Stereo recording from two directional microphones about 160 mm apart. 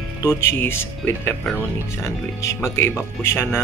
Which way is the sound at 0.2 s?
15° left (ahead or behind).